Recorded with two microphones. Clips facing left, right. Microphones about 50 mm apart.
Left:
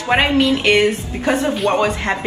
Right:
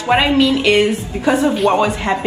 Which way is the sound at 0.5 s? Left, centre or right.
Left.